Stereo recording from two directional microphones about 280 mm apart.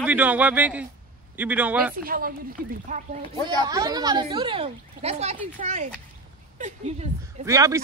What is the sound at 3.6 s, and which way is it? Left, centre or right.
A woman's voice, centre.